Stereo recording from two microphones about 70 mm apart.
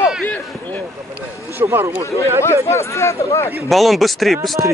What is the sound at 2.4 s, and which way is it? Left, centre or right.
Speech, left.